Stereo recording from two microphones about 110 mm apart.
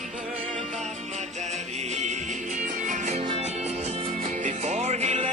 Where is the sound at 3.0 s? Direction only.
90° right.